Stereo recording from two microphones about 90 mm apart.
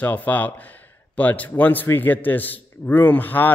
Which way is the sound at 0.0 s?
20° left (ahead or behind).